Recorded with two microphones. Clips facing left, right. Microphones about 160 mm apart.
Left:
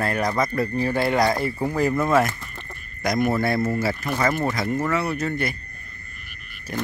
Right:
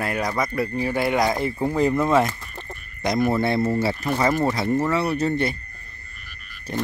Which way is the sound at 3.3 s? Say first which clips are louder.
Right 1 dB; 25° right (ahead or behind).